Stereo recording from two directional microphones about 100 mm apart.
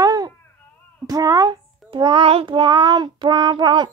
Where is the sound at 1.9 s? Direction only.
55° right (ahead or behind).